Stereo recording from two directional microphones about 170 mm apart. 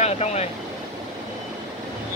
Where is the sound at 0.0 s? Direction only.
40° left (ahead or behind).